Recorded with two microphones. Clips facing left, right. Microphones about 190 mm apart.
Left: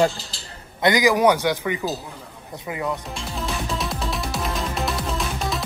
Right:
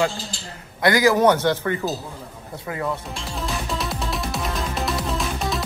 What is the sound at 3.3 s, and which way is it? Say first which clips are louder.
Music: even; centre (ahead or behind).